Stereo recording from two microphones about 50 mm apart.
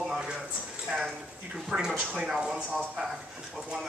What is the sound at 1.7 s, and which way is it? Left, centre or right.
Speech, centre.